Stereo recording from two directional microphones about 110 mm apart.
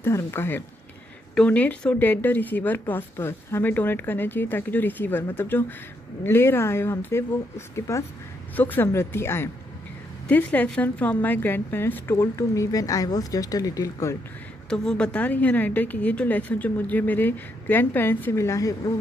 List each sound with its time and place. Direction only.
0.0 s a woman's voice: 25° left (ahead or behind)
14.7 s a woman's voice: 10° left (ahead or behind); by 18.9 s 30° left (ahead or behind)